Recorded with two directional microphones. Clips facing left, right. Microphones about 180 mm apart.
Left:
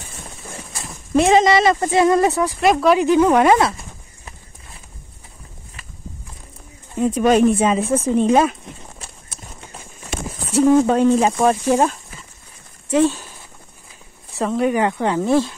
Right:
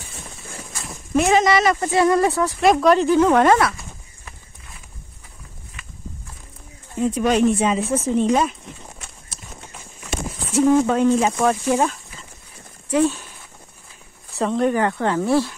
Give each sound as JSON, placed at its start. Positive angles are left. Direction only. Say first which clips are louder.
{"t": 1.1, "sound": "speech", "louder": "left 3 dB", "side_deg": 25}
{"t": 2.6, "sound": "speech", "louder": "even", "side_deg": 5}
{"t": 3.5, "sound": "a sound", "louder": "left 2 dB", "side_deg": 25}
{"t": 7.0, "sound": "speech", "louder": "left 3 dB", "side_deg": 50}
{"t": 10.5, "sound": "speech", "louder": "left 2 dB", "side_deg": 35}
{"t": 14.4, "sound": "speech", "louder": "left 1 dB", "side_deg": 5}
{"t": 14.8, "sound": "speech", "louder": "left 1 dB", "side_deg": 15}